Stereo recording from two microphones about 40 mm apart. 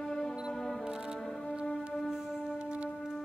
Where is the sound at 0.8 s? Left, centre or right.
Centre.